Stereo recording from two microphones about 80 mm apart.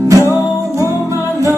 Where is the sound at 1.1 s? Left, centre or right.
Right.